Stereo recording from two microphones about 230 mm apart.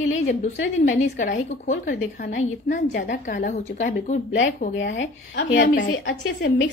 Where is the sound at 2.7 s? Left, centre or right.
Left.